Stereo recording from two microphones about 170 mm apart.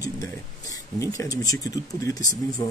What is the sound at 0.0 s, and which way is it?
Speech, 20° left (ahead or behind).